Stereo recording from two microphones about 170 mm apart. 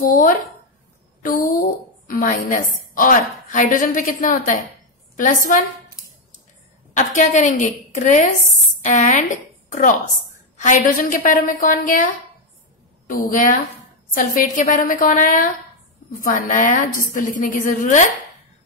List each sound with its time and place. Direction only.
1.2 s a woman's voice: 55° left (ahead or behind)
7.0 s a woman's voice: 45° left (ahead or behind)